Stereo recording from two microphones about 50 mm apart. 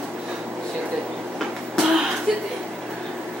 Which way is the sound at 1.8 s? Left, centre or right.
Centre.